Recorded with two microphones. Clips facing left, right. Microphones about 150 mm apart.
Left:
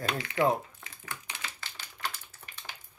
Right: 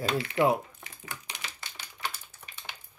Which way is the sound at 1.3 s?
15° right (ahead or behind).